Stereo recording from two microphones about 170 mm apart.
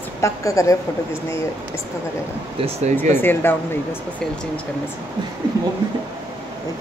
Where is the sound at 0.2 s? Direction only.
20° left (ahead or behind).